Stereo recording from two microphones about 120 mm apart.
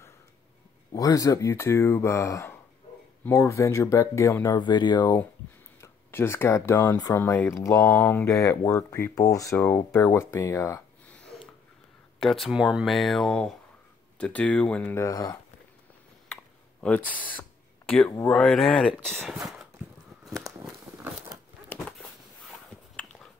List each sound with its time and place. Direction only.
0.9 s speech: 30° left (ahead or behind)
4.6 s speech: 40° left (ahead or behind)
5.8 s speech: 20° left (ahead or behind)
7.2 s speech: 20° left (ahead or behind)
12.2 s speech: centre (ahead or behind)
15.0 s speech: 30° left (ahead or behind)
16.8 s speech: 10° left (ahead or behind)
20.2 s a sound: 5° right (ahead or behind)